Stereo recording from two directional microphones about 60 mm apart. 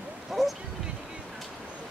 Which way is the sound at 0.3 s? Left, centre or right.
Centre.